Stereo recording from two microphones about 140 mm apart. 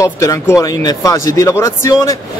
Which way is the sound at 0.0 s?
25° left (ahead or behind).